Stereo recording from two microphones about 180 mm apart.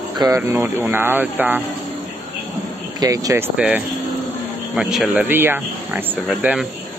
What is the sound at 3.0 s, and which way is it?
Speech, 20° right (ahead or behind).